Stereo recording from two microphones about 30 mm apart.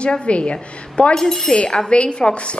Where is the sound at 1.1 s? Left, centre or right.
Centre.